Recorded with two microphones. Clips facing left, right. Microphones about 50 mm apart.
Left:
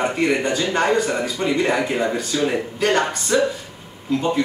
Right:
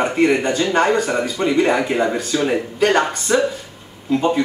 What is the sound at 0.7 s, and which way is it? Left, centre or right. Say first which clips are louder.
Speech: right 2 dB; centre.